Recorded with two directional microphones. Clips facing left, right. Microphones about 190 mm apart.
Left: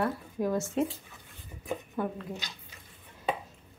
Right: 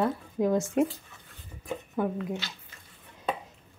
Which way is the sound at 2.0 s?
15° right (ahead or behind).